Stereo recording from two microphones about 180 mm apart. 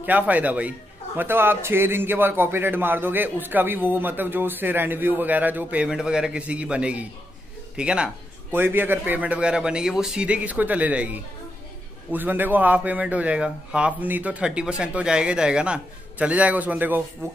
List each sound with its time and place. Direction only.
0.0 s a man's voice: 10° right (ahead or behind)